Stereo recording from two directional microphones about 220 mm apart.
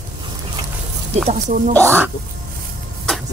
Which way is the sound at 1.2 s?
35° right (ahead or behind).